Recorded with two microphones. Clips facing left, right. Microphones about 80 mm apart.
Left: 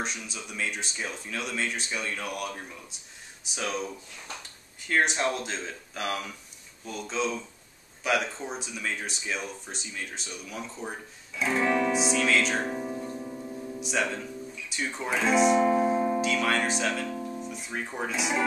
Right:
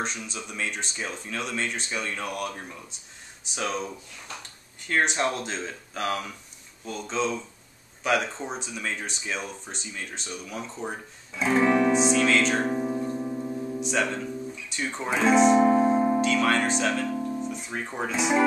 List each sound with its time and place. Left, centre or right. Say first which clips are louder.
0.0 s speech: right 2 dB; centre
11.9 s speech: right 4 dB; centre
12.6 s music: right 5 dB; centre
13.7 s guitar: right 2 dB; centre
14.7 s speech: right 1 dB; centre
15.5 s keyboard: right 3 dB; right
16.2 s music: right 3 dB; centre
17.4 s music: right 5 dB; centre
18.0 s speech: right 4 dB; centre